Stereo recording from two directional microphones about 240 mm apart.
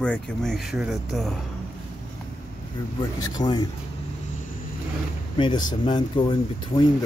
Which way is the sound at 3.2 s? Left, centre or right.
Centre.